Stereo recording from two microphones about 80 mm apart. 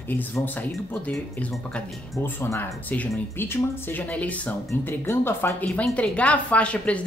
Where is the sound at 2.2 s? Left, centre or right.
Left.